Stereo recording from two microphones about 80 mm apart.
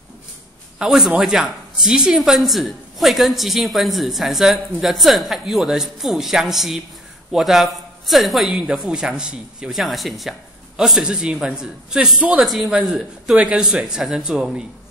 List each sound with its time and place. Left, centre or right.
0.7 s a woman's voice: centre
12.4 s a woman's voice: centre